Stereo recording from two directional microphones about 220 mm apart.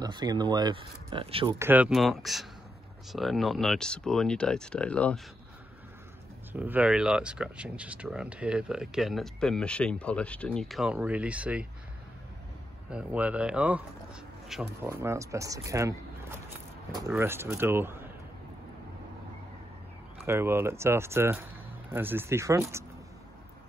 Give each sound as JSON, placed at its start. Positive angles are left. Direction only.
{"t": 0.0, "sound": "speech", "side_deg": -20}
{"t": 1.7, "sound": "speech", "side_deg": -5}
{"t": 6.5, "sound": "speech", "side_deg": -5}
{"t": 12.9, "sound": "speech", "side_deg": -5}
{"t": 20.2, "sound": "speech", "side_deg": -10}